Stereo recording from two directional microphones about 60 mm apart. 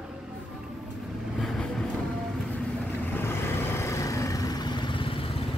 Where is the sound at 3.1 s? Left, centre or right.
Left.